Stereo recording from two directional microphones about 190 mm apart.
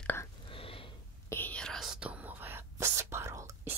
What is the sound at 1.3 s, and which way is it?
Whispering, 10° left (ahead or behind).